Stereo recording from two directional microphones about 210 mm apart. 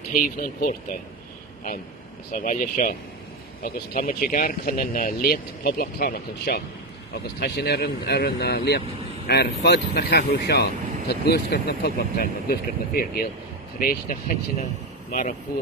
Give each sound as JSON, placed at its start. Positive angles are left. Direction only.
{"t": 0.1, "sound": "speech", "side_deg": 40}
{"t": 2.3, "sound": "speech", "side_deg": 40}